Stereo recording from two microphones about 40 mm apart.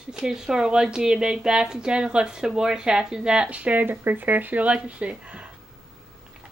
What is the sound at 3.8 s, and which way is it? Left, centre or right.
Speech, right.